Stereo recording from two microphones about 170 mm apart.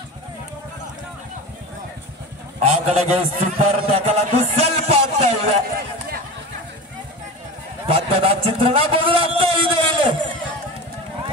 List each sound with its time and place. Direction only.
2.6 s a man's voice: 40° right (ahead or behind)
7.8 s a man's voice: 35° right (ahead or behind)